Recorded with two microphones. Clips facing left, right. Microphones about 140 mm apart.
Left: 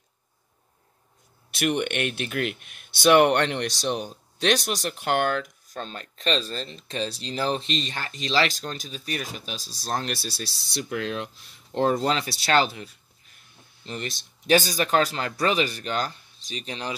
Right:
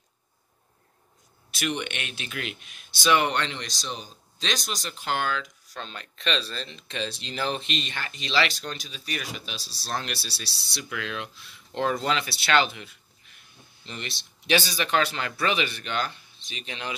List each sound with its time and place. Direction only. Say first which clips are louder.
1.5 s speech: left 5 dB; 55° left (ahead or behind); by 16.9 s 35° left (ahead or behind)